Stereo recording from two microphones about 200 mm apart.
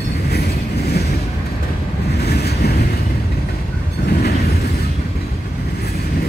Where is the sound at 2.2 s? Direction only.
55° left (ahead or behind).